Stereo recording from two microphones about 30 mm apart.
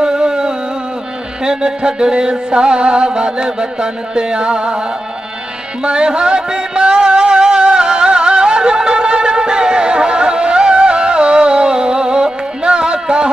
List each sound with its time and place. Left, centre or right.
0.0 s a sound: right
1.4 s music: right
5.9 s music: right